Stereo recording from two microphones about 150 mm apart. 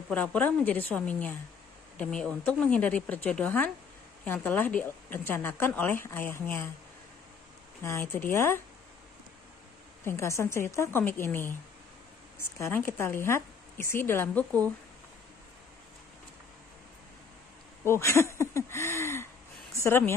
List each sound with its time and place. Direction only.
0.1 s a woman's voice: 10° left (ahead or behind)
7.8 s speech: 20° left (ahead or behind)
10.0 s a woman's voice: 20° left (ahead or behind)
17.8 s speech: 15° left (ahead or behind)